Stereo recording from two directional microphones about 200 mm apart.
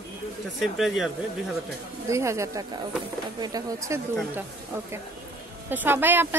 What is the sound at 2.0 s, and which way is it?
A woman's voice, 15° right (ahead or behind).